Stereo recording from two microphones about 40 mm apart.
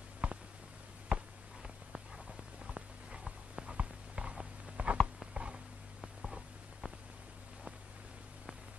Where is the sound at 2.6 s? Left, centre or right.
Right.